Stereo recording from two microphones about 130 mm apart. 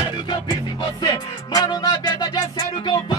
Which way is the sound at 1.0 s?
30° left (ahead or behind).